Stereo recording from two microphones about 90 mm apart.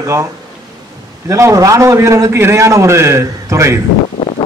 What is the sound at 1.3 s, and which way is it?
A man's voice, 35° right (ahead or behind).